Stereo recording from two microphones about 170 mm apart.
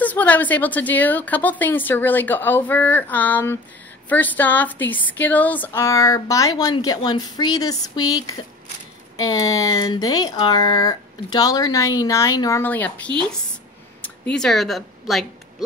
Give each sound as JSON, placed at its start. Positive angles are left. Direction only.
{"t": 0.0, "sound": "a woman's voice", "side_deg": 10}